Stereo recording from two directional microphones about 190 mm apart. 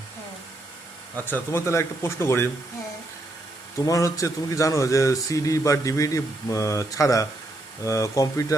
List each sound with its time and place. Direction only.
1.1 s speech: 10° left (ahead or behind)
3.7 s speech: 15° left (ahead or behind)